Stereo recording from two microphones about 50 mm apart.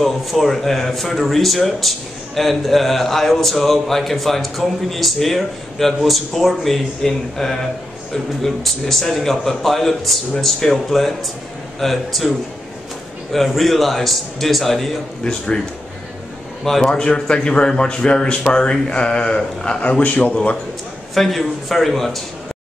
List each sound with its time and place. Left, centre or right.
0.0 s speech: centre
13.3 s speech: centre
16.6 s a man's voice: centre
19.8 s a man's voice: left
21.1 s speech: centre